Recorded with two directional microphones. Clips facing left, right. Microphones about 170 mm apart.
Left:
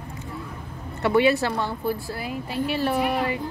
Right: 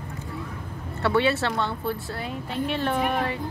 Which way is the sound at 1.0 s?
15° left (ahead or behind).